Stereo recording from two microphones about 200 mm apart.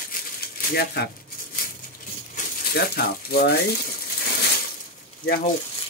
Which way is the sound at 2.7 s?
55° left (ahead or behind).